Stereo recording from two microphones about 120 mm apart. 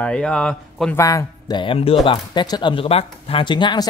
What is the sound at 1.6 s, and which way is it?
Speech, 50° left (ahead or behind).